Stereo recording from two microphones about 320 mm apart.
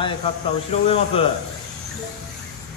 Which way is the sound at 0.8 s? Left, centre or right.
Centre.